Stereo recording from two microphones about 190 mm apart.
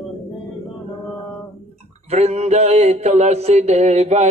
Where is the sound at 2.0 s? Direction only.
35° right (ahead or behind).